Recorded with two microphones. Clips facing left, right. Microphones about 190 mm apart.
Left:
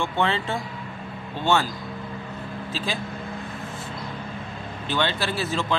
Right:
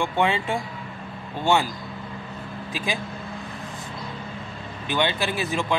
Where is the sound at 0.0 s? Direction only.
15° right (ahead or behind).